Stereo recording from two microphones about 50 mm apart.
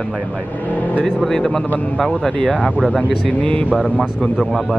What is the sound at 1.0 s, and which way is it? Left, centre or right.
Speech, centre.